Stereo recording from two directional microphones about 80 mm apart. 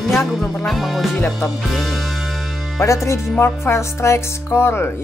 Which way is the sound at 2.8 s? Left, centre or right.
Left.